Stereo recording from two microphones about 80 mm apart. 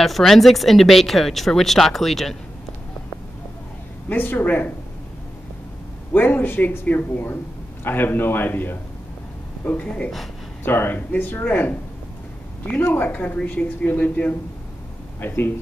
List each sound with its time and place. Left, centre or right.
0.0 s speech: centre
4.1 s speech: left
6.1 s speech: left